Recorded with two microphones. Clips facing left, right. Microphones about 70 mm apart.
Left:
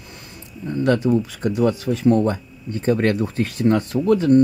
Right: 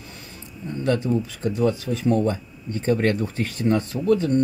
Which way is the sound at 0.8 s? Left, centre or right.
Left.